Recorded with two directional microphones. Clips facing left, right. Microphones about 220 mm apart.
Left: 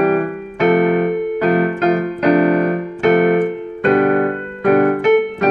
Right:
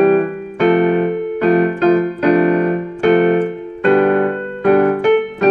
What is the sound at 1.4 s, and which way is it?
Keyboard, 35° right (ahead or behind).